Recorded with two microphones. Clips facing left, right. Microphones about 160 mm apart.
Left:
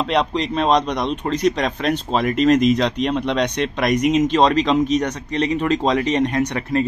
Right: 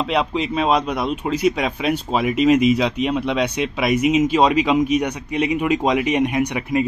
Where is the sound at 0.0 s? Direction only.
5° right (ahead or behind).